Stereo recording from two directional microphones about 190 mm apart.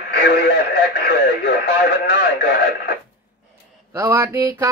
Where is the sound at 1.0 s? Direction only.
55° left (ahead or behind).